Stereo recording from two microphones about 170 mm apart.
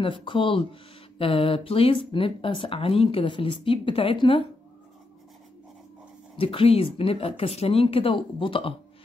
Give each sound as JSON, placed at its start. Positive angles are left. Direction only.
{"t": 0.0, "sound": "speech", "side_deg": 30}
{"t": 6.3, "sound": "speech", "side_deg": 35}